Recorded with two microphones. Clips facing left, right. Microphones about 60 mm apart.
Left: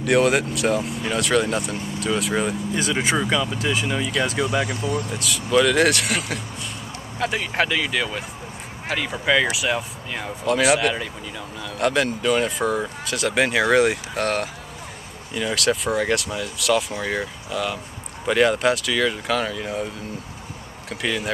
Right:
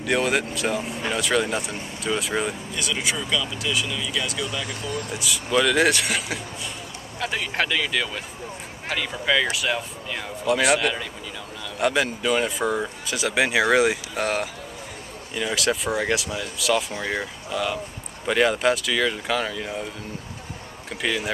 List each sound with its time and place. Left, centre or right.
0.0 s speech: centre
2.7 s speech: left
5.1 s speech: centre
20.9 s speech: centre